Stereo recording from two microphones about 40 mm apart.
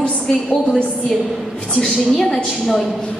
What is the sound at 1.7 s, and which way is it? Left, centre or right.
Speech, centre.